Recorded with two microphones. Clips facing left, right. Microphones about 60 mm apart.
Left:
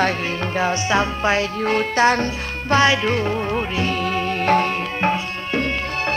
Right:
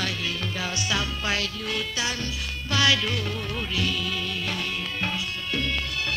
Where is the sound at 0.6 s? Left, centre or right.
Left.